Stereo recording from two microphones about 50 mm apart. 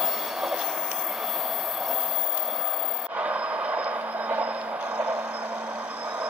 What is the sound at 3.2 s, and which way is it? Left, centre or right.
Vehicle, right.